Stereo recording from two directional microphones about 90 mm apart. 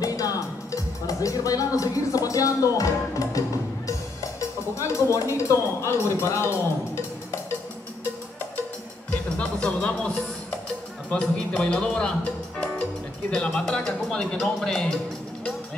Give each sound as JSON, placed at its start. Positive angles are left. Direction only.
{"t": 0.0, "sound": "music", "side_deg": 40}
{"t": 5.1, "sound": "speech", "side_deg": 35}
{"t": 9.1, "sound": "speech", "side_deg": 10}